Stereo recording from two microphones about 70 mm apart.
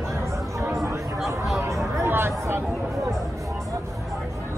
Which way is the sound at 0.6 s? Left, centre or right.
Right.